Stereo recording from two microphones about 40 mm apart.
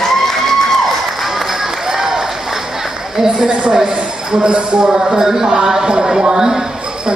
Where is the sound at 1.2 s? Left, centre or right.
Centre.